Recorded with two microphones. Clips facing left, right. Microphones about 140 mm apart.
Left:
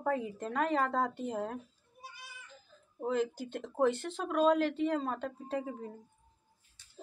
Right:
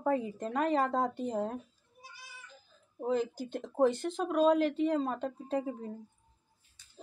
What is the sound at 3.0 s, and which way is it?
A woman's voice, 15° right (ahead or behind).